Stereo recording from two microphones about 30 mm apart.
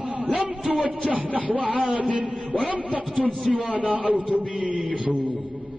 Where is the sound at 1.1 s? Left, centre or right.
Right.